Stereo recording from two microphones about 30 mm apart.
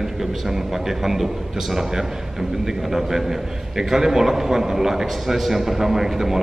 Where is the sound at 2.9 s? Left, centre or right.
Centre.